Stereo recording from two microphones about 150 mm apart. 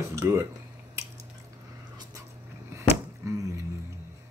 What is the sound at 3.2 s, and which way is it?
Music, 20° right (ahead or behind).